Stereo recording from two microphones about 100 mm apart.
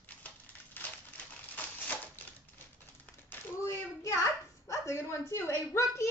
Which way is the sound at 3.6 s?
30° left (ahead or behind).